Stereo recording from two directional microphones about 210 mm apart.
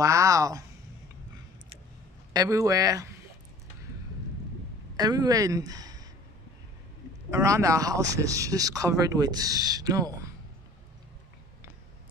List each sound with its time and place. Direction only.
0.0 s speech: 15° right (ahead or behind)
2.3 s speech: 15° right (ahead or behind)
4.9 s speech: 20° right (ahead or behind)
7.2 s speech: 15° right (ahead or behind)